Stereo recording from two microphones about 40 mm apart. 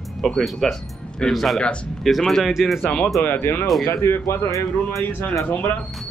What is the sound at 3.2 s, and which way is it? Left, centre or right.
Speech, left.